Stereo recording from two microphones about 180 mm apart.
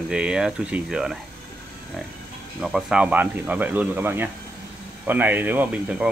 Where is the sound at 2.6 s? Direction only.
5° right (ahead or behind).